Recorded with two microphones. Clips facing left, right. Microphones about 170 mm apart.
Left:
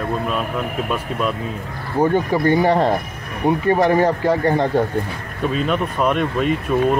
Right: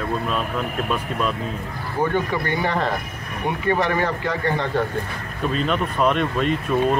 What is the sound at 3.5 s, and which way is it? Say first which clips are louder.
Speech: left 6 dB; 40° left (ahead or behind).